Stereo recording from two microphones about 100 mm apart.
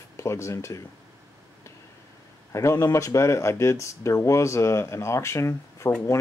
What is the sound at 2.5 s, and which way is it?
Speech, 30° left (ahead or behind).